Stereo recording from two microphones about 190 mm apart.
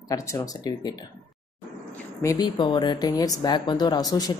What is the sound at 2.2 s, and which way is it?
Speech, 20° left (ahead or behind).